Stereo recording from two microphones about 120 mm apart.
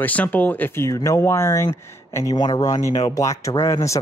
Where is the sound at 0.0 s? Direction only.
15° left (ahead or behind).